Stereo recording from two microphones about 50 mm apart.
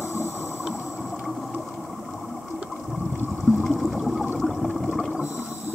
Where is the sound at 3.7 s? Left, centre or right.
Centre.